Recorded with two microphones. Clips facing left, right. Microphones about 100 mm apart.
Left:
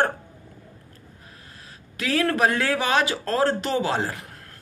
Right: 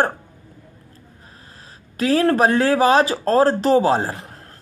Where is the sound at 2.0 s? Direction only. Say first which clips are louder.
Right 6 dB; 35° right (ahead or behind).